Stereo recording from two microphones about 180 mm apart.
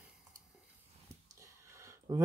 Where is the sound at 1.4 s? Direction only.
15° right (ahead or behind).